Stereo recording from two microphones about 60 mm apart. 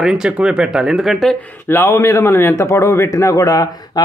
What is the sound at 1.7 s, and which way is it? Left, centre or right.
Speech, left.